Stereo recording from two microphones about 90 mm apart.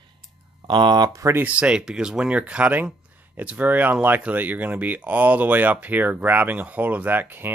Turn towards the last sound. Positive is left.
turn(degrees=-20)  # may be behind; listen again after turning